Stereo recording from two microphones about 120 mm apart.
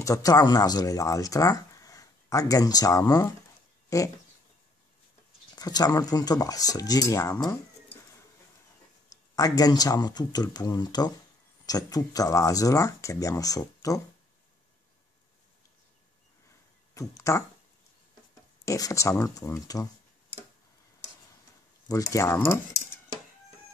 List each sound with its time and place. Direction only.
0.0 s speech: 30° left (ahead or behind)
5.6 s speech: 35° left (ahead or behind)
9.1 s speech: 30° left (ahead or behind)
16.9 s speech: 25° left (ahead or behind)
18.7 s speech: 25° left (ahead or behind)
21.8 s speech: 30° left (ahead or behind)